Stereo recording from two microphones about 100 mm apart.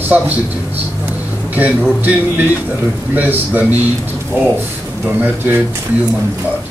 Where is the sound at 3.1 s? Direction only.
20° right (ahead or behind).